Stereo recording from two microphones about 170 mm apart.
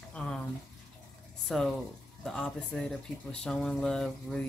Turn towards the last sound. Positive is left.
turn(degrees=5)  # may be behind; listen again after turning